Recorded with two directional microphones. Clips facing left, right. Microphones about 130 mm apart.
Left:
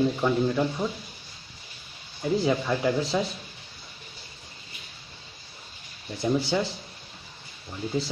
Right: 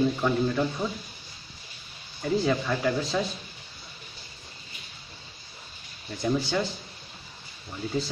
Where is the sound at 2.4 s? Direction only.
20° left (ahead or behind).